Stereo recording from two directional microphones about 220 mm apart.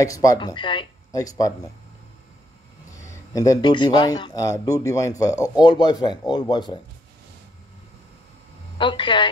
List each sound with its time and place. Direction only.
0.0 s speech: 15° left (ahead or behind)
3.0 s speech: 15° left (ahead or behind)
8.7 s speech: 20° left (ahead or behind)